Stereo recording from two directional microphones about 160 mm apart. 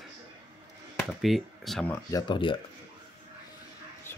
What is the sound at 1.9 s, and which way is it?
Speech, 20° left (ahead or behind).